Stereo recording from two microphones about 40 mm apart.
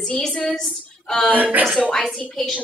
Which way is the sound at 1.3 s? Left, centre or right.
Right.